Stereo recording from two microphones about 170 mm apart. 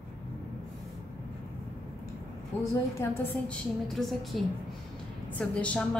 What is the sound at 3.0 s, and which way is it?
Speech, 15° left (ahead or behind).